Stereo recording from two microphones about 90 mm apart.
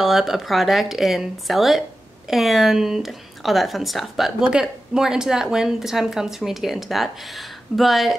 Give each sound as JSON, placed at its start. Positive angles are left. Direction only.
{"t": 0.0, "sound": "speech", "side_deg": -5}